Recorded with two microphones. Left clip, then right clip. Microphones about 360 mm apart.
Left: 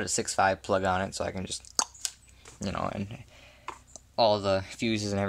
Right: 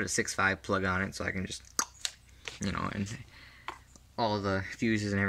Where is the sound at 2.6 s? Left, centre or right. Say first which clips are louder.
Left 3 dB; centre.